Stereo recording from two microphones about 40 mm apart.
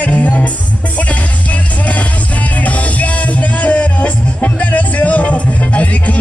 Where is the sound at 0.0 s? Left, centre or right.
Left.